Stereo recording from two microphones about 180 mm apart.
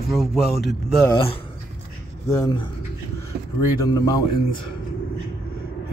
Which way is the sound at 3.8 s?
20° left (ahead or behind).